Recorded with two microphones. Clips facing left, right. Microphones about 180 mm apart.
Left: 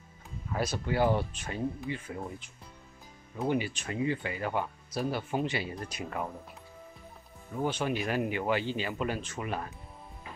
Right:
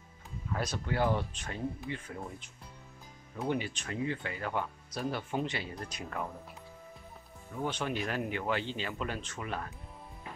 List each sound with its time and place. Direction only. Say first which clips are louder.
0.5 s speech: left 3 dB; 5° left (ahead or behind)
7.6 s speech: left 3 dB; 5° left (ahead or behind)